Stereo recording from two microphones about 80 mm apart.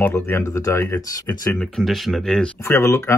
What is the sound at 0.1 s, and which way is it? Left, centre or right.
Speech, left.